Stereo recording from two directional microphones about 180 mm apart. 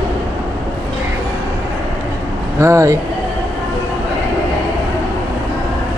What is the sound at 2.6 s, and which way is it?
Speech, 15° right (ahead or behind).